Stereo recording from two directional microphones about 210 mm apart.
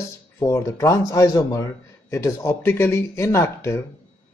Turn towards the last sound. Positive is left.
turn(degrees=10)  # may be behind; listen again after turning